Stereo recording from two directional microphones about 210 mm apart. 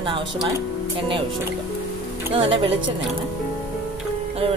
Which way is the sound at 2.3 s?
25° right (ahead or behind).